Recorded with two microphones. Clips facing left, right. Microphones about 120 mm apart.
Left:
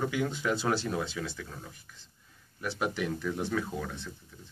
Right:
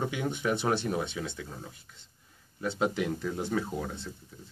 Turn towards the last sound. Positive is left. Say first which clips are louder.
# right 2 dB
turn(degrees=-30)  # may be behind; listen again after turning